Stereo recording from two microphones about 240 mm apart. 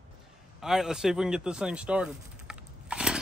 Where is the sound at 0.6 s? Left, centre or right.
Centre.